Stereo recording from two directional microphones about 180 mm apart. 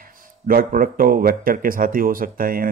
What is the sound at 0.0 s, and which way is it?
Speech, 55° right (ahead or behind).